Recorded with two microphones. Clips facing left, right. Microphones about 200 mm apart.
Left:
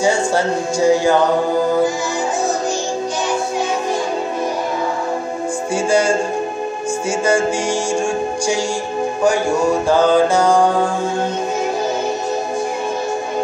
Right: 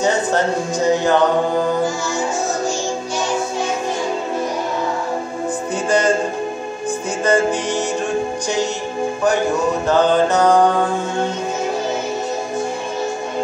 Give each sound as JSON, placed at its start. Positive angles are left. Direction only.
{"t": 0.0, "sound": "speech", "side_deg": 10}
{"t": 5.9, "sound": "music", "side_deg": 10}
{"t": 9.8, "sound": "music", "side_deg": 10}